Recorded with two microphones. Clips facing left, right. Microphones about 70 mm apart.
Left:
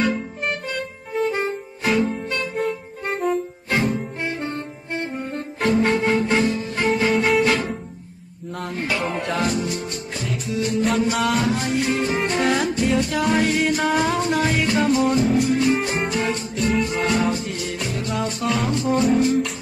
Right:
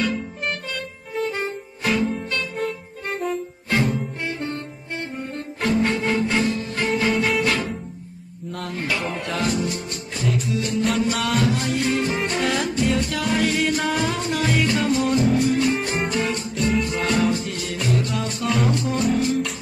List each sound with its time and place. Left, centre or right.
0.5 s music: left
1.3 s music: centre
4.2 s saxophone: left
6.9 s music: centre
8.7 s music: centre
10.1 s music: centre
11.4 s music: centre
16.8 s music: centre
18.0 s music: centre
18.4 s music: centre
18.7 s music: left